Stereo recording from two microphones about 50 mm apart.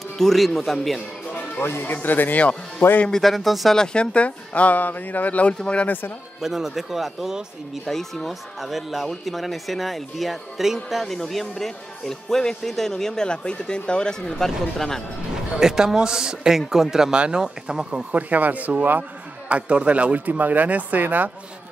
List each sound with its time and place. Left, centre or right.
0.2 s speech: centre
1.3 s music: left
1.7 s speech: left
3.1 s speech: centre
3.7 s speech: centre
5.5 s speech: left
5.9 s speech: left
6.4 s speech: centre
7.8 s speech: centre
14.4 s speech: centre
15.6 s a man's voice: centre
18.1 s speech: right